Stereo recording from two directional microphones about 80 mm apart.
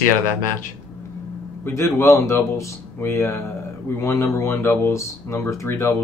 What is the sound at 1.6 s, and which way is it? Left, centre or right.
Speech, left.